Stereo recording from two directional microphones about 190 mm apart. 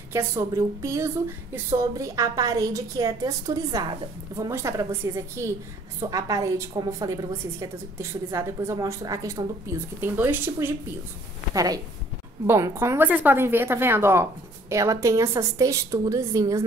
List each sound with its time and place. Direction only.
0.1 s a woman's voice: 15° right (ahead or behind)